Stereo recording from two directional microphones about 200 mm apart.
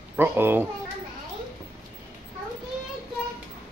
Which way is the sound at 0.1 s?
10° right (ahead or behind).